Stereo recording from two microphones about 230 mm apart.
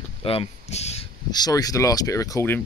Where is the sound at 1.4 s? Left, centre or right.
Centre.